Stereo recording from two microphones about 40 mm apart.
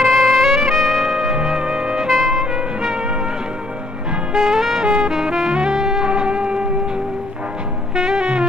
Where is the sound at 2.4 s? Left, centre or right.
Right.